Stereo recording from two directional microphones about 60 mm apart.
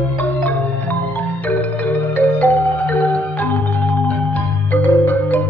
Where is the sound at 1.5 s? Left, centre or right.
Left.